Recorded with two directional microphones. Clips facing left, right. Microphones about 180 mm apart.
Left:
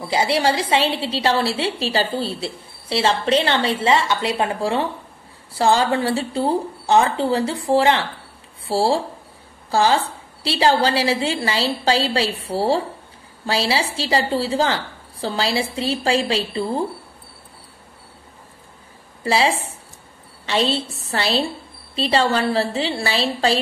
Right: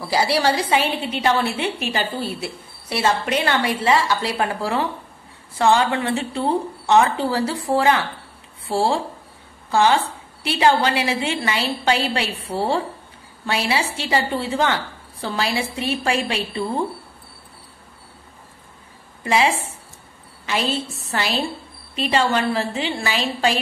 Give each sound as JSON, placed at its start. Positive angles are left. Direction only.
{"t": 0.1, "sound": "a woman's voice", "side_deg": 25}
{"t": 19.2, "sound": "a woman's voice", "side_deg": 35}